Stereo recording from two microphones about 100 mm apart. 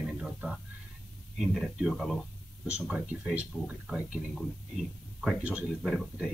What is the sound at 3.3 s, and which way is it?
Speech, 15° right (ahead or behind).